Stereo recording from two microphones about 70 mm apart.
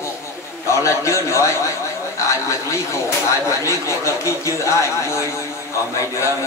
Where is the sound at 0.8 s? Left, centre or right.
Left.